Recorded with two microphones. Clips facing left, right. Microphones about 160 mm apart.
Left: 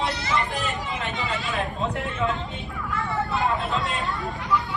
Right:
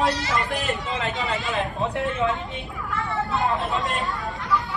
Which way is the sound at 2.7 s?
Centre (ahead or behind).